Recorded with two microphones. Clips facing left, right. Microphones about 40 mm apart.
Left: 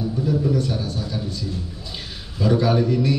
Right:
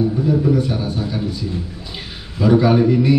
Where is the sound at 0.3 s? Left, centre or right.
Centre.